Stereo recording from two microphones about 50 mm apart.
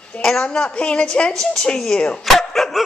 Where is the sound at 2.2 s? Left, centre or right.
Centre.